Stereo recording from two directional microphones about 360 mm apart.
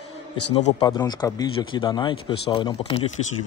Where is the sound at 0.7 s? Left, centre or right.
Centre.